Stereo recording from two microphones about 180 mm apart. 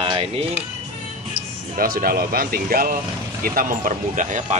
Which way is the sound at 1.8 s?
55° right (ahead or behind).